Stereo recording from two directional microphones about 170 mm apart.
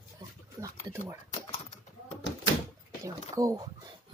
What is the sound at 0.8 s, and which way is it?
Speech, 15° right (ahead or behind).